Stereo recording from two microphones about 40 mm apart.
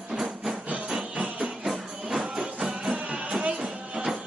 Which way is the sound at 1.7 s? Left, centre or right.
Centre.